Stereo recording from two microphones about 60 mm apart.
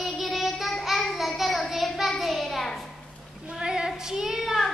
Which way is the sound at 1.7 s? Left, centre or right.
Centre.